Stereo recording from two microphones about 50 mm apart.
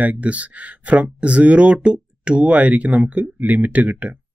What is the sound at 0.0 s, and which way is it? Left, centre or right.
Speech, right.